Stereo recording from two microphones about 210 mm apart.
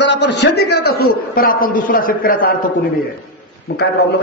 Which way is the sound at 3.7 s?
50° left (ahead or behind).